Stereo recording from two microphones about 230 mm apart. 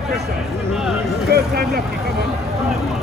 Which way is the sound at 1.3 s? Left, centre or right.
Right.